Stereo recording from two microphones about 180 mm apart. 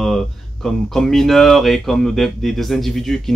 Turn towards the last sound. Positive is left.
turn(degrees=0)  # may be behind; listen again after turning